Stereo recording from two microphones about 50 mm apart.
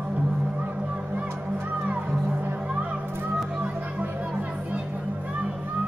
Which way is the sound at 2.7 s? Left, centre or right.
Right.